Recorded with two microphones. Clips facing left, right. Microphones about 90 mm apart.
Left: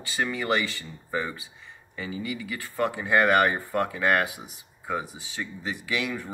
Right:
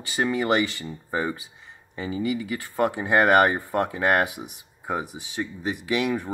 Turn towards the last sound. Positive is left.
turn(degrees=-20)  # may be behind; listen again after turning